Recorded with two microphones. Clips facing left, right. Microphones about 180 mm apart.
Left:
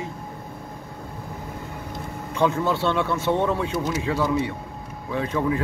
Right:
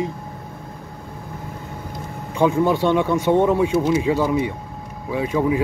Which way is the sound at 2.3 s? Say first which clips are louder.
Right 5 dB; 15° right (ahead or behind).